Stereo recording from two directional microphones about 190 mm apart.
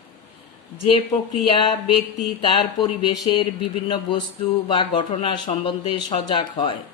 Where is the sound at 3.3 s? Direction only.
25° left (ahead or behind).